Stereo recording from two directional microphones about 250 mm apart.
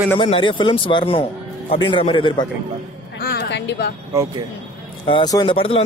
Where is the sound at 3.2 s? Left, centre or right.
Left.